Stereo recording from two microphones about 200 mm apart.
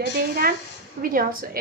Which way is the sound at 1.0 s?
45° right (ahead or behind).